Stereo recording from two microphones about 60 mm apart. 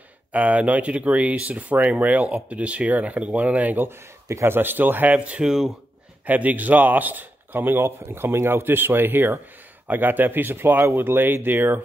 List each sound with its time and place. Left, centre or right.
0.3 s speech: right
4.3 s a man's voice: right
4.6 s speech: right
5.1 s speech: right
8.6 s speech: right